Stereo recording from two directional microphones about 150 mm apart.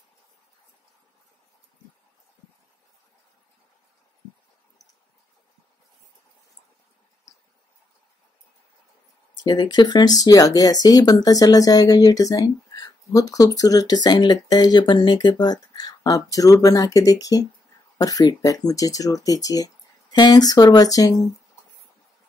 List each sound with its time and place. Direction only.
9.4 s speech: 30° left (ahead or behind)